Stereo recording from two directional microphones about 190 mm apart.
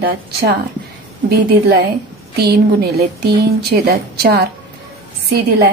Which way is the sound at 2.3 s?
55° right (ahead or behind).